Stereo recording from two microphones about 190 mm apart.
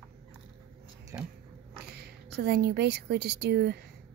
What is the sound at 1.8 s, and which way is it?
A woman's voice, 55° right (ahead or behind).